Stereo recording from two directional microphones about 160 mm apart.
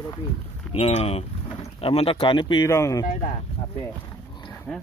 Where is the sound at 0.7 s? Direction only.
40° left (ahead or behind).